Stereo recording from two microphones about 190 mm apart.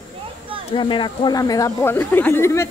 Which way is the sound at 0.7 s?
25° left (ahead or behind).